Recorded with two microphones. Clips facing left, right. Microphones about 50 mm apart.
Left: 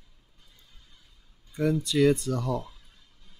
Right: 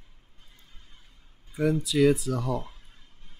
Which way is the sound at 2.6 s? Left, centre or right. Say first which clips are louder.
Right 1 dB; right.